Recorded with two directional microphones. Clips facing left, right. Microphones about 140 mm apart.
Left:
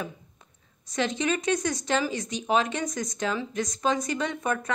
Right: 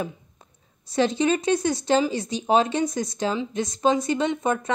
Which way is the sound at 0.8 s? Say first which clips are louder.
Right 6 dB; 30° right (ahead or behind).